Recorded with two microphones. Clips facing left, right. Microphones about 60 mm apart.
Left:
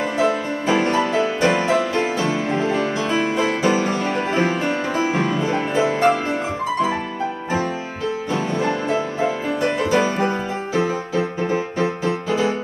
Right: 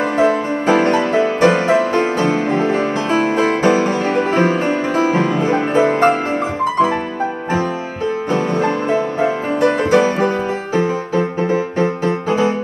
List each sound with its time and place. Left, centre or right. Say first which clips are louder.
0.2 s music: right 5 dB; right
8.3 s music: right 5 dB; right